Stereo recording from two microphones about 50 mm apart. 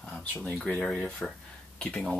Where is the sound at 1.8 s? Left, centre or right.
Left.